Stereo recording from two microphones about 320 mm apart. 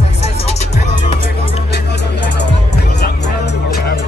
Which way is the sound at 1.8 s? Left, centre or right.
Left.